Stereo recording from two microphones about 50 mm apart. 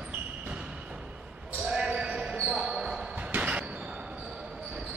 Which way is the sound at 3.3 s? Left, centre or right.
Right.